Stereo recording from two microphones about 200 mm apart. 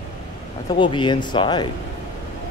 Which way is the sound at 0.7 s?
25° left (ahead or behind).